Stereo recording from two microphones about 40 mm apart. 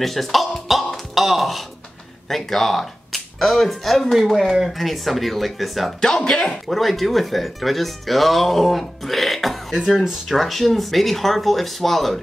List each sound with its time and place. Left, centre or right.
0.0 s a sound: centre
2.2 s speech: centre
5.9 s speech: centre
6.7 s speech: centre